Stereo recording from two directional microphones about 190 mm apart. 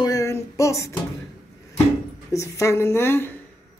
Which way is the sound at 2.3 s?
15° left (ahead or behind).